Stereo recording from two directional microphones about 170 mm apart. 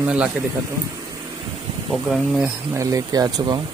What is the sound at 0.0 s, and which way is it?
Speech, 5° right (ahead or behind).